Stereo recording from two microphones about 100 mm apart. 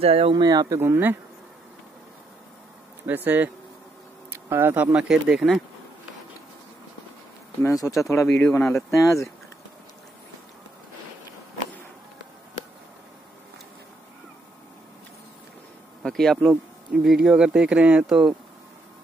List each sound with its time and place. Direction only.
0.0 s speech: 70° right (ahead or behind)
0.4 s speech: 40° right (ahead or behind)
0.7 s bee: 20° right (ahead or behind)
3.3 s speech: 15° right (ahead or behind)
4.9 s speech: 5° right (ahead or behind)
7.6 s speech: 30° left (ahead or behind)
16.0 s speech: 5° left (ahead or behind)